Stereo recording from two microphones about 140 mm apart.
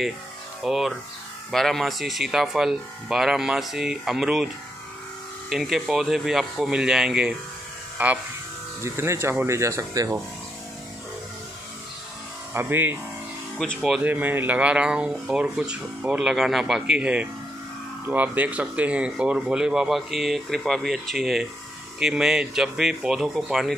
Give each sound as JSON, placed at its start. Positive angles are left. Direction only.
{"t": 0.6, "sound": "speech", "side_deg": 0}
{"t": 5.5, "sound": "speech", "side_deg": 0}
{"t": 12.5, "sound": "speech", "side_deg": -15}